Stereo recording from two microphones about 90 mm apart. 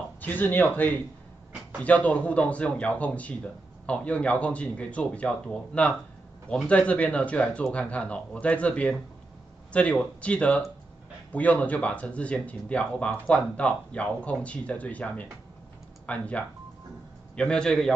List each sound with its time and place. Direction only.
0.2 s speech: 20° left (ahead or behind)